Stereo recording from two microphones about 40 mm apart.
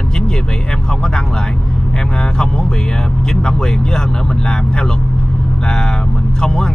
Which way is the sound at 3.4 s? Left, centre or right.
Centre.